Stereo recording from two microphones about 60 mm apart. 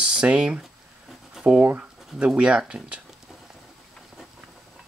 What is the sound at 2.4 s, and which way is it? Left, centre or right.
Speech, centre.